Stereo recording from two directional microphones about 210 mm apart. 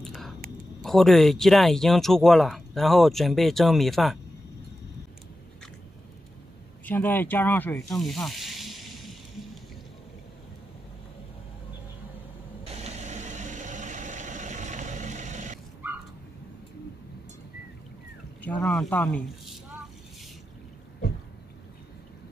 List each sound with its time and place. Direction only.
0.0 s a sound: centre (ahead or behind)
0.8 s speech: centre (ahead or behind)
6.9 s speech: 10° left (ahead or behind)
12.7 s vehicle: 30° right (ahead or behind)
15.8 s a sound: 10° right (ahead or behind)
18.4 s speech: 5° left (ahead or behind)